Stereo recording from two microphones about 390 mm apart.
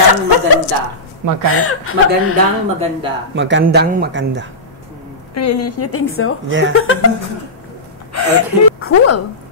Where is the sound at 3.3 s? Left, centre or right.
Right.